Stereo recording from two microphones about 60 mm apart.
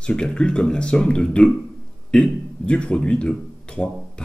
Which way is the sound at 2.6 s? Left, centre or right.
Centre.